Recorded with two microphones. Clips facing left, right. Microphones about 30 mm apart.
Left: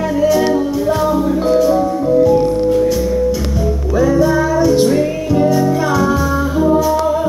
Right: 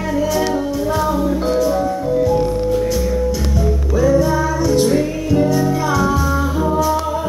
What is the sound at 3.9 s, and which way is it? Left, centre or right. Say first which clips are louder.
Music: left 2 dB; centre.